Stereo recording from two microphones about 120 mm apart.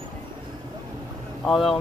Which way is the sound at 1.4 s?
Centre (ahead or behind).